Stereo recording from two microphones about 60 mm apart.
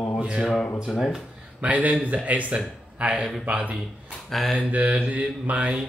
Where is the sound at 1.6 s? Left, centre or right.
Right.